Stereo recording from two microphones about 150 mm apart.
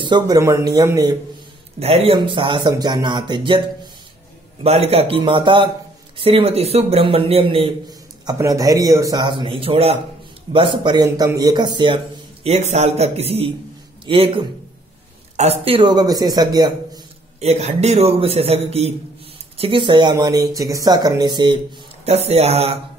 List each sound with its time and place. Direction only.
0.0 s speech: 30° right (ahead or behind)
1.8 s a man's voice: 40° right (ahead or behind)
4.6 s a man's voice: 45° right (ahead or behind)
8.3 s a man's voice: 20° right (ahead or behind)
12.4 s a man's voice: 50° right (ahead or behind)
15.6 s speech: 35° right (ahead or behind)
17.4 s a man's voice: 45° right (ahead or behind); by 21.5 s 30° right (ahead or behind)
22.0 s a man's voice: 45° right (ahead or behind)